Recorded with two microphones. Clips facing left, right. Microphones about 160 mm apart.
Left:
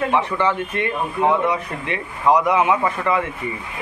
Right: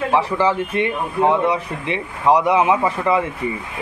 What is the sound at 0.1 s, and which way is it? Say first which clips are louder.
A man's voice: right 2 dB; 30° right (ahead or behind).